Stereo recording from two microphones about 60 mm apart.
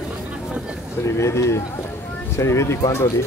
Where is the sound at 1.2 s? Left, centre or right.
Left.